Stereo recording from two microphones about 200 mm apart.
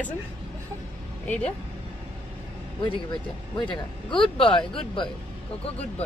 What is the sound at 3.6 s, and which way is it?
A man's voice, 25° left (ahead or behind).